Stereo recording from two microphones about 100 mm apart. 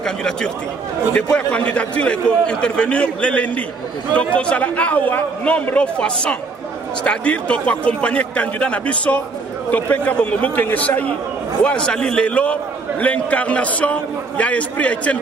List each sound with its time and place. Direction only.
0.0 s a man's voice: 5° left (ahead or behind)